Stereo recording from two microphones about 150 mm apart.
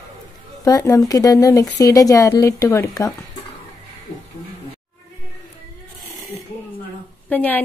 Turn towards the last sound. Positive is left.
turn(degrees=10)  # may be behind; listen again after turning